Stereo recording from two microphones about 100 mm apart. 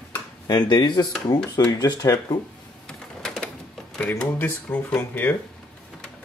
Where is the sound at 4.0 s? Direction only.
15° left (ahead or behind).